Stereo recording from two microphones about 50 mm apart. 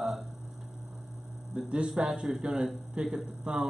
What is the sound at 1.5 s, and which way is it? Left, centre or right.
A man's voice, centre.